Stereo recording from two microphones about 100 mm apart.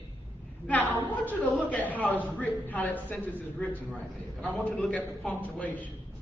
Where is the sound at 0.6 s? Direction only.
20° left (ahead or behind).